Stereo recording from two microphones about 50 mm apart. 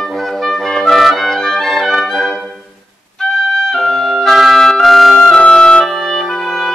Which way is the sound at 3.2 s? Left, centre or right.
Centre.